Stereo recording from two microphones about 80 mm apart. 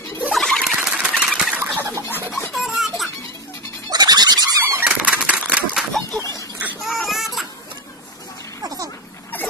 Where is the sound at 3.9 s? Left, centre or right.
Right.